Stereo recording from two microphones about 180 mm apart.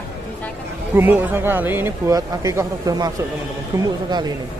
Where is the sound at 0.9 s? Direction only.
10° right (ahead or behind).